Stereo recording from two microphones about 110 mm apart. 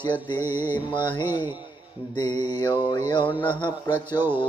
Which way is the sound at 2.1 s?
40° left (ahead or behind).